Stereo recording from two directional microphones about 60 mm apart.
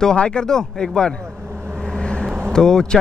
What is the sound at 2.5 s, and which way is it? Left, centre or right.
Speech, centre.